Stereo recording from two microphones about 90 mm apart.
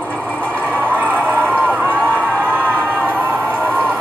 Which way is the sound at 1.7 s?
20° right (ahead or behind).